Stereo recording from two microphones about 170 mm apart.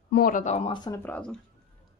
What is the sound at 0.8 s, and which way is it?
Speech, 20° left (ahead or behind).